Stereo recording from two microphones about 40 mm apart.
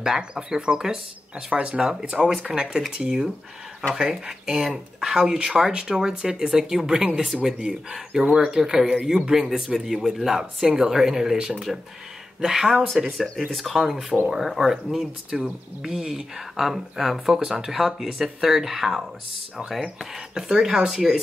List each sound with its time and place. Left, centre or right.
0.0 s speech: centre
11.5 s speech: centre
13.5 s speech: centre
20.3 s speech: centre